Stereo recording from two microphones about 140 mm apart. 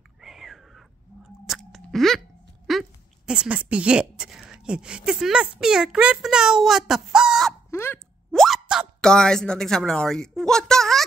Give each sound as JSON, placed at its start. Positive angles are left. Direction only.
{"t": 0.2, "sound": "whispering", "side_deg": 0}
{"t": 1.4, "sound": "speech", "side_deg": 0}
{"t": 7.7, "sound": "speech", "side_deg": 15}
{"t": 8.3, "sound": "speech", "side_deg": 0}